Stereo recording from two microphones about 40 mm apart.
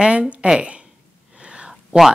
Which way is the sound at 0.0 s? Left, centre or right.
Right.